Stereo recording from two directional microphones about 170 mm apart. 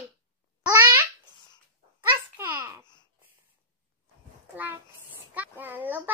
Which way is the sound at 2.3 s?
15° right (ahead or behind).